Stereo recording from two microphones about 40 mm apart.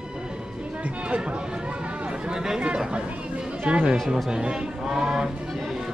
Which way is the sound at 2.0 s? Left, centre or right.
Centre.